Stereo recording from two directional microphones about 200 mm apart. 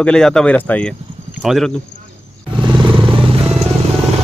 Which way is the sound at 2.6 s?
25° right (ahead or behind).